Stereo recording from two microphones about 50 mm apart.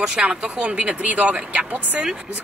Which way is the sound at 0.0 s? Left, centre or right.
Centre.